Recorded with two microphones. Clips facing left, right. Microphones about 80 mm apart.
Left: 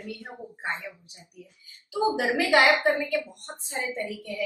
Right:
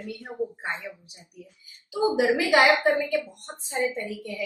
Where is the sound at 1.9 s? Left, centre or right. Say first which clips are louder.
Right 2 dB; right.